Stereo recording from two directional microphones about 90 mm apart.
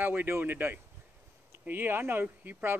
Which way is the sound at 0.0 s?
20° right (ahead or behind).